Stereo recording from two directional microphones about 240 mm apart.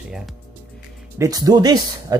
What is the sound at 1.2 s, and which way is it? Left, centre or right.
Speech, centre.